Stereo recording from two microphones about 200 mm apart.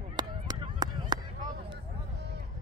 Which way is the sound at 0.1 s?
20° right (ahead or behind).